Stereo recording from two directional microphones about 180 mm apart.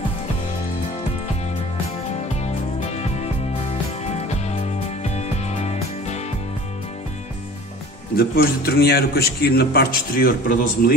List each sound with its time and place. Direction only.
2.4 s music: 35° left (ahead or behind)
8.2 s a man's voice: 60° left (ahead or behind)